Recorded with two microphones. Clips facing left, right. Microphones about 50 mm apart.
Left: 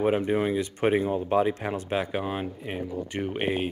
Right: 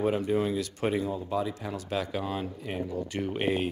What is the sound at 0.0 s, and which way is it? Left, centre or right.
Speech, left.